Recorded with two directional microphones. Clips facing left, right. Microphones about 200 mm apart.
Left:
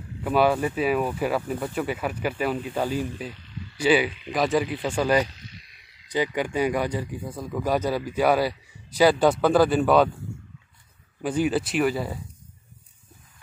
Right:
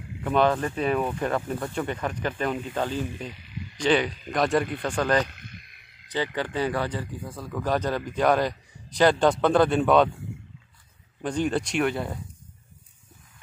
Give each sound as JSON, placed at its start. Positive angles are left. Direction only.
{"t": 0.2, "sound": "speech", "side_deg": 10}
{"t": 3.3, "sound": "a sound", "side_deg": -15}
{"t": 3.7, "sound": "speech", "side_deg": 5}
{"t": 5.3, "sound": "a sound", "side_deg": -55}
{"t": 6.0, "sound": "speech", "side_deg": 15}
{"t": 11.2, "sound": "speech", "side_deg": 5}